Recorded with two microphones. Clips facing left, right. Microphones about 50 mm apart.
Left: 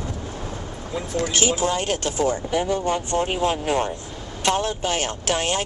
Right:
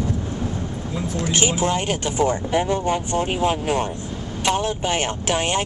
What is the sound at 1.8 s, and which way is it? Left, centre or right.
Speech, centre.